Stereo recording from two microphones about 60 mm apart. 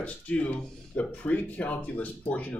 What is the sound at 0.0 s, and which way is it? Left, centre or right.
Speech, left.